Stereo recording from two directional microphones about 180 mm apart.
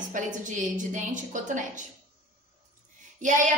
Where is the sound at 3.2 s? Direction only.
45° right (ahead or behind).